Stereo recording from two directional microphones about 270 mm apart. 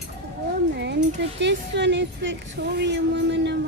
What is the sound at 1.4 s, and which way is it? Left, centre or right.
A woman's voice, right.